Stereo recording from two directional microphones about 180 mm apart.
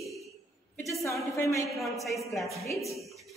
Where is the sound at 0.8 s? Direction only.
15° left (ahead or behind).